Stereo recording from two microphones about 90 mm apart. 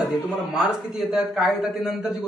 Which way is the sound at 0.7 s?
5° right (ahead or behind).